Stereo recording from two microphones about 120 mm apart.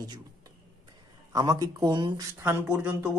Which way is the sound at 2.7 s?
15° right (ahead or behind).